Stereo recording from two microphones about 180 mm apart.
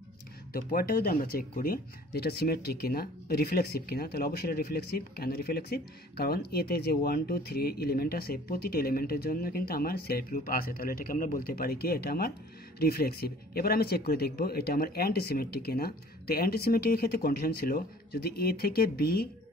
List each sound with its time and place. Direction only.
0.5 s speech: 55° left (ahead or behind)